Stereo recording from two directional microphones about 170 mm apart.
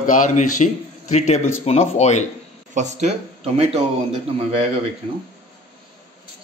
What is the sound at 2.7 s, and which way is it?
Speech, 45° right (ahead or behind).